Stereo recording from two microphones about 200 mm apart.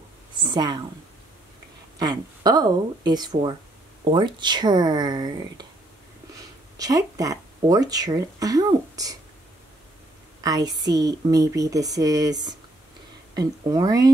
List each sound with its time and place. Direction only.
0.4 s speech: 20° right (ahead or behind)
2.0 s speech: 20° right (ahead or behind)
6.8 s speech: 15° right (ahead or behind)
10.4 s a woman's voice: 20° right (ahead or behind)